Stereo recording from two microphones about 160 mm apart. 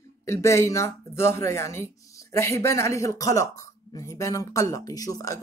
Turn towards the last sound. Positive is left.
turn(degrees=20)  # may be behind; listen again after turning